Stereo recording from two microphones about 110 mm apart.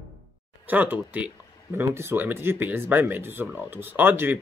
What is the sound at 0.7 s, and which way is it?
A man's voice, 15° right (ahead or behind).